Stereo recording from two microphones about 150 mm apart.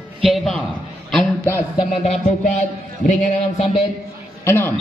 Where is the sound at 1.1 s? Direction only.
10° left (ahead or behind).